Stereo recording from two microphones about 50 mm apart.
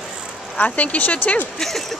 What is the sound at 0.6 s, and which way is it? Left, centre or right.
Speech, left.